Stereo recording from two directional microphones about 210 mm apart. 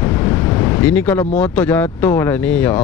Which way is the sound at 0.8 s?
10° left (ahead or behind).